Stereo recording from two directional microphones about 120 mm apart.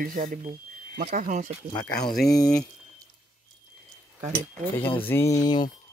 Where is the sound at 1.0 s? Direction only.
85° right.